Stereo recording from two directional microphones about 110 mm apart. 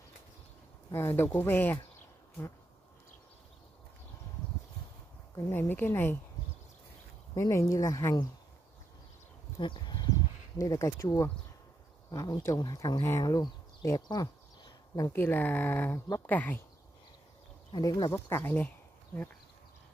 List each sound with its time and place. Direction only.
0.9 s speech: 20° left (ahead or behind)
5.5 s speech: 20° left (ahead or behind)
7.3 s speech: 25° left (ahead or behind)
9.6 s speech: 45° left (ahead or behind)
13.2 s a sound: 35° left (ahead or behind)
15.1 s speech: 20° left (ahead or behind)
17.7 s speech: 40° left (ahead or behind)
18.1 s speech: 20° left (ahead or behind)